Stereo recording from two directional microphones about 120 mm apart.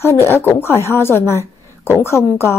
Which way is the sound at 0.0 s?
20° left (ahead or behind).